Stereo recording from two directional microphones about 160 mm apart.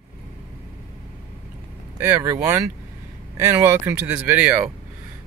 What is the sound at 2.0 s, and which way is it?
Speech, 15° right (ahead or behind).